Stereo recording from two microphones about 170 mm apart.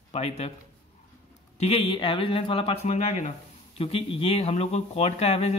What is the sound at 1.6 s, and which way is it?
Speech, 35° left (ahead or behind).